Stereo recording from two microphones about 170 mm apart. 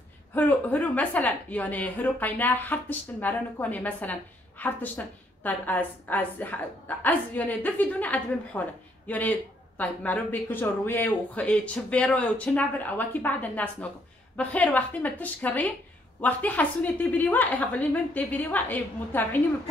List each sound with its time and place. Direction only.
0.3 s a woman's voice: 10° left (ahead or behind)